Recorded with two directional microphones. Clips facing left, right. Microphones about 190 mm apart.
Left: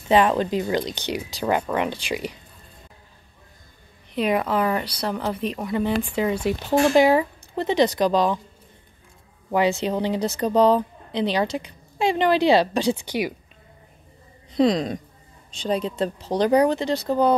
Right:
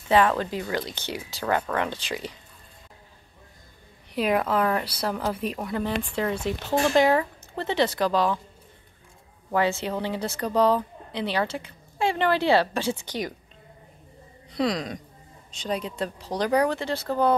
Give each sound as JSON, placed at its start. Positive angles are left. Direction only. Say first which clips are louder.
{"t": 0.1, "sound": "speech", "louder": "left 3 dB", "side_deg": 20}
{"t": 4.1, "sound": "speech", "louder": "left 2 dB", "side_deg": 0}
{"t": 9.5, "sound": "speech", "louder": "left 4 dB", "side_deg": 15}
{"t": 14.5, "sound": "speech", "louder": "left 6 dB", "side_deg": 25}